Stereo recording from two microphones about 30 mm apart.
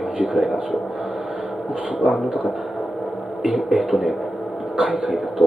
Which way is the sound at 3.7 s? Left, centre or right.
Centre.